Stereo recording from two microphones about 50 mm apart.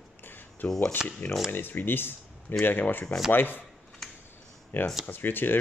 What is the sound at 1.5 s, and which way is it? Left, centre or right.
Speech, left.